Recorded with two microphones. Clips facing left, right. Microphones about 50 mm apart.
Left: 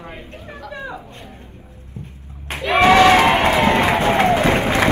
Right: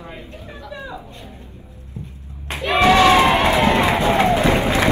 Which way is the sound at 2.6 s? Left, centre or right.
Left.